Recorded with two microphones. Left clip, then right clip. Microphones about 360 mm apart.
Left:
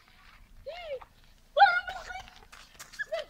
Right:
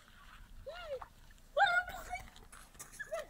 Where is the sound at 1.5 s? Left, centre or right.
Left.